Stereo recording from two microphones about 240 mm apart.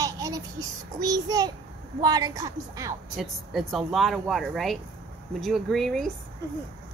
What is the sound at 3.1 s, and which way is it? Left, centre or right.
A woman's voice, centre.